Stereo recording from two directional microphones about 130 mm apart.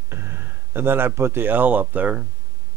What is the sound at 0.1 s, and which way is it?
Speech, 20° right (ahead or behind).